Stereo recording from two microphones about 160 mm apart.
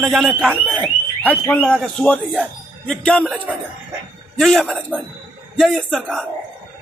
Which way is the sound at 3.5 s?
10° right (ahead or behind).